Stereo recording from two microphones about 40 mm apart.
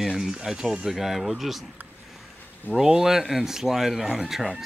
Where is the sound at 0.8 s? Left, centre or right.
Centre.